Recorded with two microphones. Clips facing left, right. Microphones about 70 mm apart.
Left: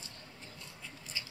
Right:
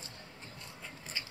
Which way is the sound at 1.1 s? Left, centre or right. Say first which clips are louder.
Right 1 dB; right.